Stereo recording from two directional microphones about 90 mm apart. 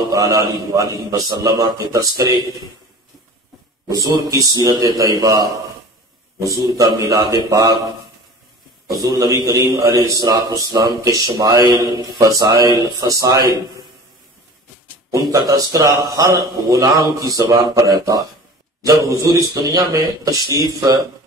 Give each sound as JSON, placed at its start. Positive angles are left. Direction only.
{"t": 0.1, "sound": "a man's voice", "side_deg": -40}
{"t": 3.9, "sound": "a man's voice", "side_deg": -40}
{"t": 9.0, "sound": "a man's voice", "side_deg": -45}
{"t": 15.0, "sound": "a man's voice", "side_deg": -35}